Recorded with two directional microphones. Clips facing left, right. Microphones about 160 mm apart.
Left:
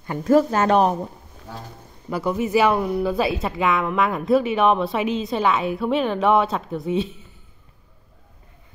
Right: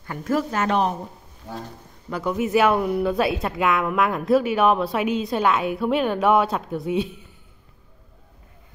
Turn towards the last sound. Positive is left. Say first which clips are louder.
# left 1 dB
turn(degrees=-5)  # may be behind; listen again after turning